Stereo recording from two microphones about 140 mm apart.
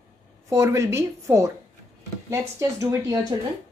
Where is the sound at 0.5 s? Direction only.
20° right (ahead or behind).